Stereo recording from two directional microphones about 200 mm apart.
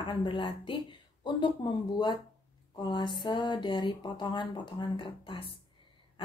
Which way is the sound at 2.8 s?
20° left (ahead or behind).